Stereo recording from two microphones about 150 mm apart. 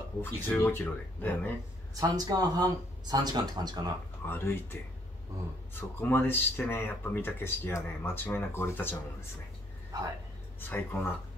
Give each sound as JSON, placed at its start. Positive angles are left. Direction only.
{"t": 0.2, "sound": "speech", "side_deg": 15}
{"t": 2.0, "sound": "speech", "side_deg": -25}
{"t": 4.3, "sound": "speech", "side_deg": 15}
{"t": 5.8, "sound": "speech", "side_deg": 15}
{"t": 10.6, "sound": "speech", "side_deg": 15}